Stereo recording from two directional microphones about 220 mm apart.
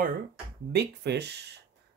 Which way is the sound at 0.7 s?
50° right (ahead or behind).